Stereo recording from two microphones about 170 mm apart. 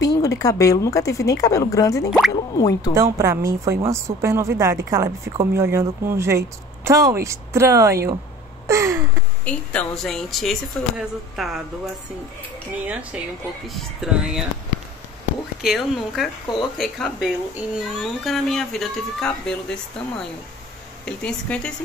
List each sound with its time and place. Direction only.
0.0 s speech: 20° left (ahead or behind)
2.9 s speech: 20° right (ahead or behind)
8.6 s a sound: 15° right (ahead or behind)
9.4 s speech: 10° left (ahead or behind)
15.6 s speech: centre (ahead or behind)